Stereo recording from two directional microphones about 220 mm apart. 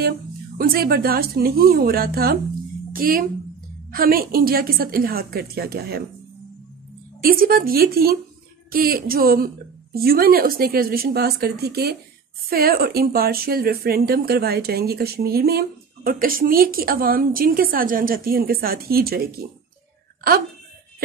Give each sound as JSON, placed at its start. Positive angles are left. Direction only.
{"t": 0.6, "sound": "speech", "side_deg": -40}
{"t": 7.2, "sound": "speech", "side_deg": -40}